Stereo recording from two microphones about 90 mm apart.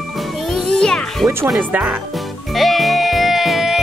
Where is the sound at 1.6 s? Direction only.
15° right (ahead or behind).